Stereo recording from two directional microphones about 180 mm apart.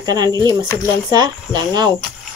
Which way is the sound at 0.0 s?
20° right (ahead or behind).